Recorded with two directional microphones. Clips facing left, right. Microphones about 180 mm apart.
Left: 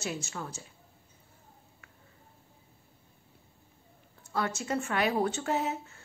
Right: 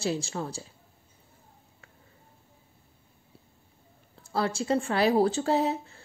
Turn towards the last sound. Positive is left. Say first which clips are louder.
# right 5 dB
turn(degrees=-35)  # may be behind; listen again after turning